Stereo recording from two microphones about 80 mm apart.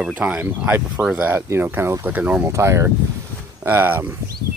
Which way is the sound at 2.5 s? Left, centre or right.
Right.